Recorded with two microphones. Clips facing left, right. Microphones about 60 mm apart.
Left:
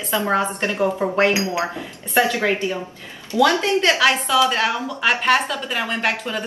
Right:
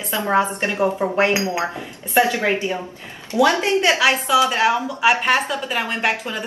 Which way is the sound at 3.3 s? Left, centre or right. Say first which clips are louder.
Even; right.